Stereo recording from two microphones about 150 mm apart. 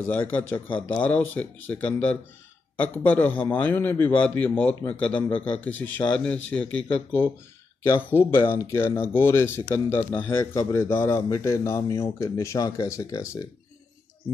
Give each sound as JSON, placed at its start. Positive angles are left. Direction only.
{"t": 0.0, "sound": "a man's voice", "side_deg": 10}